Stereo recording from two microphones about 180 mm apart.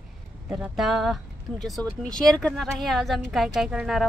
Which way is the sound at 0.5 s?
5° right (ahead or behind).